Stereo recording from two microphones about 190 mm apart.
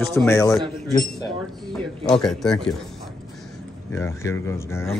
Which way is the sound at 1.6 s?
5° left (ahead or behind).